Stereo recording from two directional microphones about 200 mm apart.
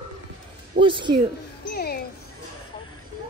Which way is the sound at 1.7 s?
50° left (ahead or behind).